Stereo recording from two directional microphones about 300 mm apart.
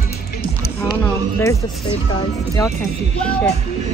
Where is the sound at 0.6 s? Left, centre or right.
Centre.